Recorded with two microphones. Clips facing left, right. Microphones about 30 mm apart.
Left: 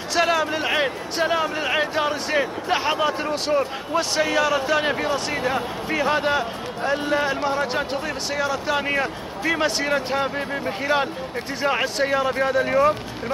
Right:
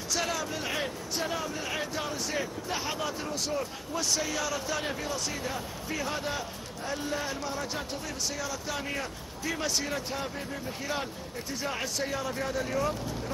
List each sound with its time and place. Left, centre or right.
0.1 s speech: left